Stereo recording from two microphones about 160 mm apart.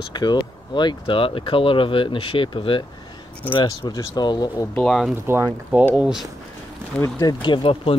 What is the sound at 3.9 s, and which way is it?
Speech, 25° left (ahead or behind).